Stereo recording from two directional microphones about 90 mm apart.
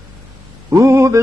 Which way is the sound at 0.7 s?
30° right (ahead or behind).